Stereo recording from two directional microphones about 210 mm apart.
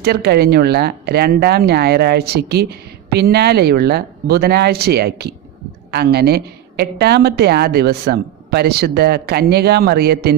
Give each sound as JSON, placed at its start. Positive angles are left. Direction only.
{"t": 0.0, "sound": "speech", "side_deg": -50}